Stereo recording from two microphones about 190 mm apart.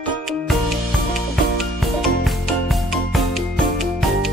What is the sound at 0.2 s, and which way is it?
Music, centre (ahead or behind).